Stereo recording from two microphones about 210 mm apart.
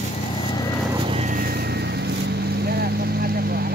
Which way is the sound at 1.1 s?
35° right (ahead or behind).